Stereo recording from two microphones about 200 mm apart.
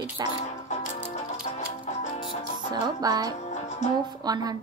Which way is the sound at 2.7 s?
20° right (ahead or behind).